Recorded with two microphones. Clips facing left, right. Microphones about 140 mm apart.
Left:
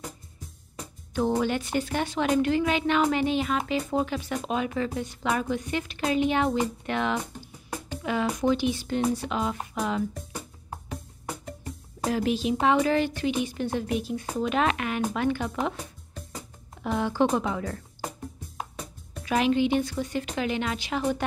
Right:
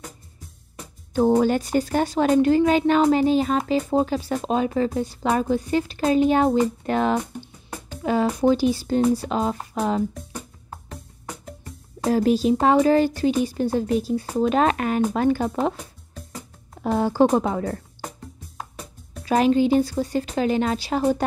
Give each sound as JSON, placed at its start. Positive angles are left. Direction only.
{"t": 1.1, "sound": "a woman's voice", "side_deg": -40}
{"t": 10.9, "sound": "music", "side_deg": 0}
{"t": 12.1, "sound": "a woman's voice", "side_deg": -40}
{"t": 15.7, "sound": "music", "side_deg": 0}
{"t": 16.8, "sound": "a woman's voice", "side_deg": -40}
{"t": 19.2, "sound": "a woman's voice", "side_deg": -40}